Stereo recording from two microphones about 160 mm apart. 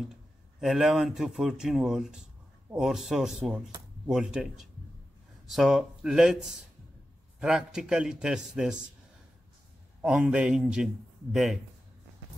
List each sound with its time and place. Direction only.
0.6 s speech: centre (ahead or behind)
10.0 s speech: 5° right (ahead or behind)